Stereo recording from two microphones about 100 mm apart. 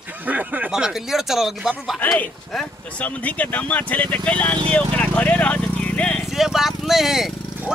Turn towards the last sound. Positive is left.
turn(degrees=-5)  # may be behind; listen again after turning